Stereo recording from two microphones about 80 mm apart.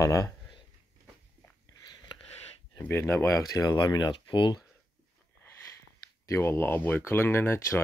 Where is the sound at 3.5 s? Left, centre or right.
Left.